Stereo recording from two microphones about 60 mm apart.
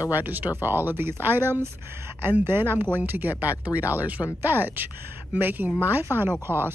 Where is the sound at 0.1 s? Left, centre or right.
Right.